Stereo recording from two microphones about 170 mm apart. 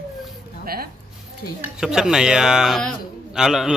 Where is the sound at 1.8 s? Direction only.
5° right (ahead or behind).